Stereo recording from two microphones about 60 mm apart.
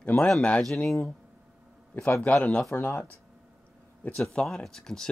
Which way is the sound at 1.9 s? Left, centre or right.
Left.